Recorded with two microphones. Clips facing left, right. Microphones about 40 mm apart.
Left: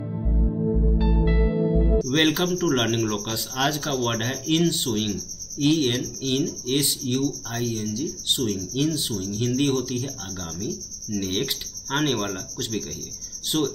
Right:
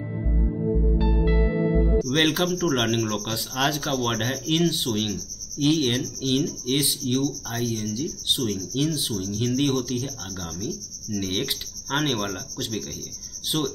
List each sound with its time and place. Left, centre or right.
2.0 s speech: centre